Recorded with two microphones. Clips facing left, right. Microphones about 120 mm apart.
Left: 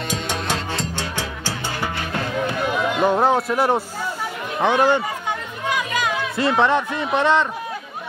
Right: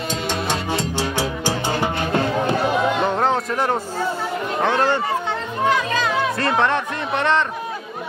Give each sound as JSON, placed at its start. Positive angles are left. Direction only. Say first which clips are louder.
{"t": 0.1, "sound": "music", "louder": "right 2 dB", "side_deg": 10}
{"t": 0.7, "sound": "music", "louder": "right 4 dB", "side_deg": -10}
{"t": 1.7, "sound": "music", "louder": "right 5 dB", "side_deg": -25}
{"t": 3.0, "sound": "a sound", "louder": "left 2 dB", "side_deg": 10}
{"t": 4.6, "sound": "a man's voice", "louder": "left 2 dB", "side_deg": 15}
{"t": 5.7, "sound": "music", "louder": "right 2 dB", "side_deg": 15}
{"t": 6.5, "sound": "a man's voice", "louder": "left 4 dB", "side_deg": 10}